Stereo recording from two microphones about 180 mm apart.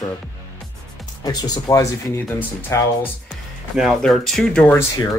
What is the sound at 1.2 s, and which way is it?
Speech, 20° left (ahead or behind).